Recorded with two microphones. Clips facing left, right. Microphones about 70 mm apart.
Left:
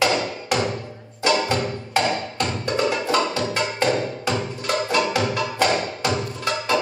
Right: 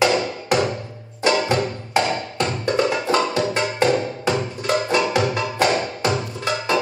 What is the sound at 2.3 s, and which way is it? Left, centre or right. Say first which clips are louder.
Music: right 3 dB; right.